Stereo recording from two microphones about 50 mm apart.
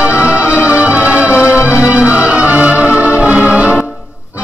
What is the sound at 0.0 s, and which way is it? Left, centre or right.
Music, right.